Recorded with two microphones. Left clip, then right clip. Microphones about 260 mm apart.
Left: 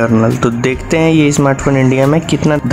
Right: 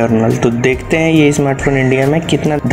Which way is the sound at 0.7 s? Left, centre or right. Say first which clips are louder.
Left 1 dB; centre.